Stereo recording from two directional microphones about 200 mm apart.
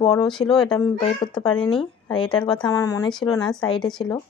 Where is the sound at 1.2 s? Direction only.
25° left (ahead or behind).